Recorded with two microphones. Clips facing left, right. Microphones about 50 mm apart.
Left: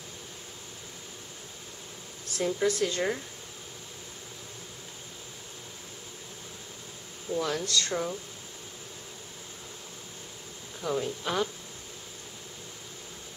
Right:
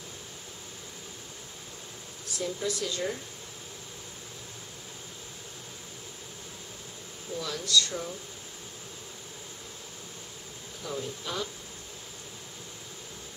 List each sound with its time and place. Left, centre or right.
2.2 s speech: left
7.3 s speech: left
10.9 s speech: left